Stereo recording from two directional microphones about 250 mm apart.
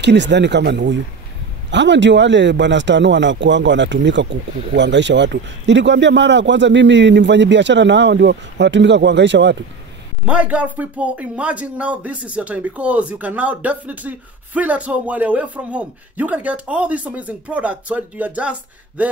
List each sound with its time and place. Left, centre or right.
0.0 s a man's voice: right
10.2 s speech: centre